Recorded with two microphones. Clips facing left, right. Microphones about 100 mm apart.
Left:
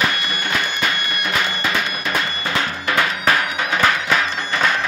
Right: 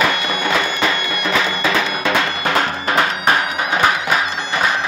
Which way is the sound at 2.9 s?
30° right (ahead or behind).